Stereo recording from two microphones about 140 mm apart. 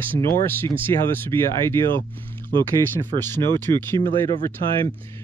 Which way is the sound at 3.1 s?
35° right (ahead or behind).